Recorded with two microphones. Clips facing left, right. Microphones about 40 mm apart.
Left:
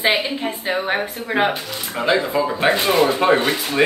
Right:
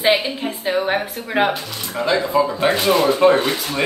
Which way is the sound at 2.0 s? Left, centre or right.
Left.